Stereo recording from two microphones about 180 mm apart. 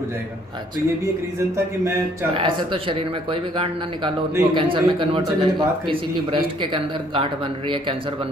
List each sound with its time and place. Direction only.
2.3 s speech: 25° right (ahead or behind)